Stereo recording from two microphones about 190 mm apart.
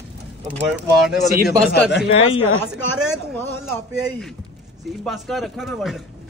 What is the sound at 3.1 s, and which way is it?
Speech, 10° left (ahead or behind).